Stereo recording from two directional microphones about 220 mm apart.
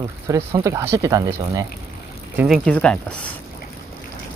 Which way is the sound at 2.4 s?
Centre (ahead or behind).